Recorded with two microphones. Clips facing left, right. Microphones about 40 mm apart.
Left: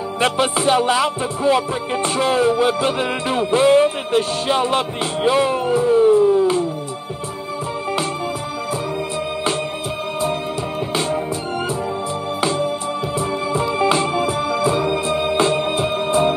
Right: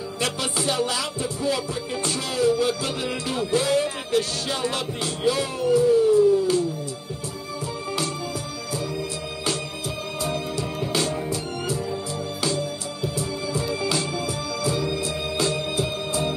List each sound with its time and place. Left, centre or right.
0.2 s music: left
10.9 s music: left
12.4 s music: left